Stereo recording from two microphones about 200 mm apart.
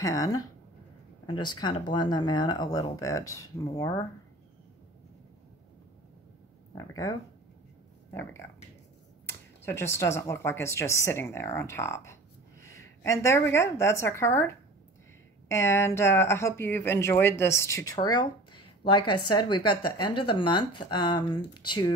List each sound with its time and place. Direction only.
0.0 s speech: 15° left (ahead or behind)
6.8 s speech: 15° left (ahead or behind)